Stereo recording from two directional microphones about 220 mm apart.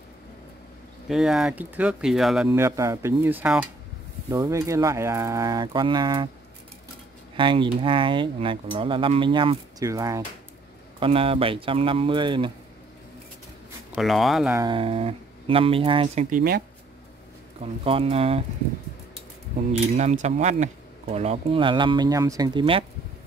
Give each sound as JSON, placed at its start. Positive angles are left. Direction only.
{"t": 1.0, "sound": "speech", "side_deg": 0}
{"t": 7.3, "sound": "speech", "side_deg": -20}
{"t": 13.9, "sound": "speech", "side_deg": 0}
{"t": 14.5, "sound": "speech", "side_deg": -20}
{"t": 16.3, "sound": "speech", "side_deg": -40}
{"t": 17.6, "sound": "speech", "side_deg": -25}
{"t": 20.0, "sound": "speech", "side_deg": -30}